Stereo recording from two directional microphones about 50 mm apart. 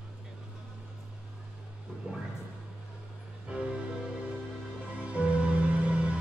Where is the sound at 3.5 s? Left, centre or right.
Right.